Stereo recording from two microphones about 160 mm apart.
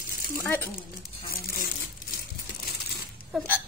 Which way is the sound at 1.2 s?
65° left (ahead or behind).